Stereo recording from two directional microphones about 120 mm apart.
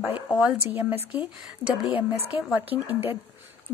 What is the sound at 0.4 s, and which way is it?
Speech, 10° right (ahead or behind).